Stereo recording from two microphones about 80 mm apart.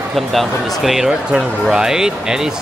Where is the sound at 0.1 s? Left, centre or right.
Centre.